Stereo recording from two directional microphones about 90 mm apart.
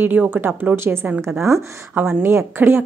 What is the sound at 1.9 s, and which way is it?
Speech, 20° right (ahead or behind).